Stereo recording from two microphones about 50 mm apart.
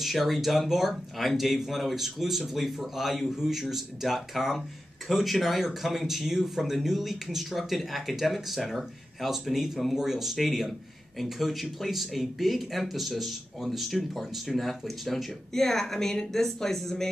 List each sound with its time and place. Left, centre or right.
0.0 s speech: centre